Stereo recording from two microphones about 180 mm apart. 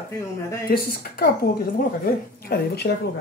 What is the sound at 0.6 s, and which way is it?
A woman's voice, 55° left (ahead or behind).